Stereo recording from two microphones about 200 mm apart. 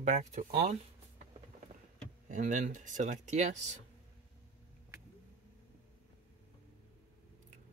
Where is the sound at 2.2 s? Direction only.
40° right (ahead or behind).